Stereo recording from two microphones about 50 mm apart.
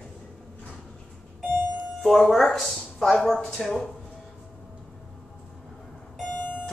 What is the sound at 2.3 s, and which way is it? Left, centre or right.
A woman's voice, centre.